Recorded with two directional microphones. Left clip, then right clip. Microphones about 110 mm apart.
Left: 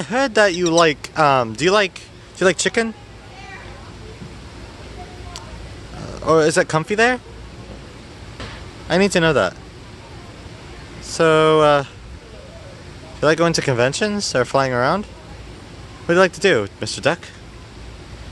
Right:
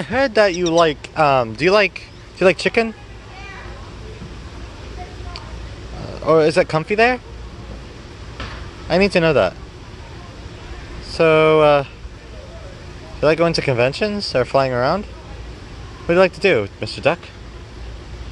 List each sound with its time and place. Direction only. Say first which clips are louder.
0.0 s speech: right 1 dB; 15° left (ahead or behind)
1.6 s speech: right 2 dB; 10° left (ahead or behind)
6.0 s speech: right 1 dB; 15° left (ahead or behind)
8.8 s speech: right 1 dB; 15° left (ahead or behind)
11.1 s speech: right 1 dB; 20° left (ahead or behind)
13.2 s speech: right 1 dB; 25° left (ahead or behind)
16.1 s speech: even; 25° left (ahead or behind)